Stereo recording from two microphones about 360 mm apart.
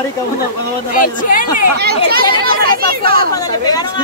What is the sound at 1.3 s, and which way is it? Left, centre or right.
Speech, left.